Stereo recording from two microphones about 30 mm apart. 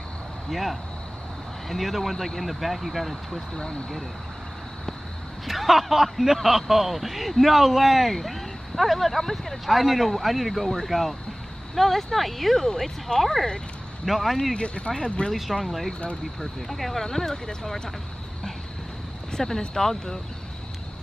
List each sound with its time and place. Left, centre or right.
0.5 s speech: centre
5.5 s speech: centre
14.0 s speech: centre
14.5 s speech: left
15.5 s speech: centre
19.3 s speech: centre